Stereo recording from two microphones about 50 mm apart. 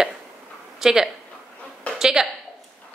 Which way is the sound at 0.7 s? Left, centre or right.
Centre.